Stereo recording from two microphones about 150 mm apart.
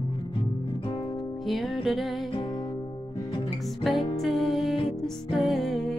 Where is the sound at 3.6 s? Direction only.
Centre (ahead or behind).